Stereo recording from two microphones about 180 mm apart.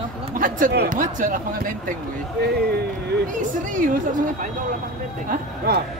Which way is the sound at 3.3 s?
45° right (ahead or behind).